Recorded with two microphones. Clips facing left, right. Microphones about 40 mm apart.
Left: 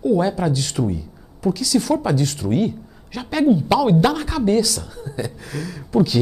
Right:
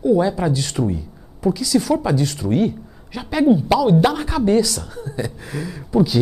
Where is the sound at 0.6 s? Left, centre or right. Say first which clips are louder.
Right 1 dB; right.